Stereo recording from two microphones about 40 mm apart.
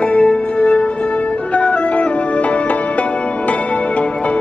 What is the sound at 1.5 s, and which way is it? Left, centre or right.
Music, left.